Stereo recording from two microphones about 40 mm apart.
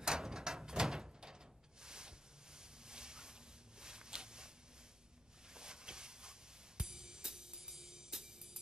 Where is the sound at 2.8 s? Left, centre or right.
Centre.